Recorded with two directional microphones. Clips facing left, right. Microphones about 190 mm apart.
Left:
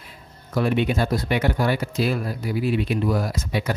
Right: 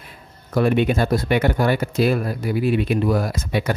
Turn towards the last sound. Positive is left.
turn(degrees=-55)  # may be behind; listen again after turning